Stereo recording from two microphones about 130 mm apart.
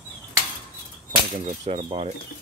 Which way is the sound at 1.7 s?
40° right (ahead or behind).